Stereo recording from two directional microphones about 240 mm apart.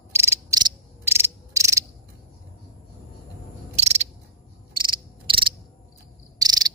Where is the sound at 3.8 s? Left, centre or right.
Right.